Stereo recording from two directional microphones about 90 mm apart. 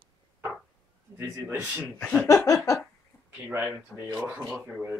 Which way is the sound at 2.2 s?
40° left (ahead or behind).